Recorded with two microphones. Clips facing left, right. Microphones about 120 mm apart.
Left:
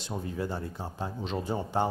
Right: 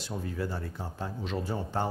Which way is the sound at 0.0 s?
20° left (ahead or behind).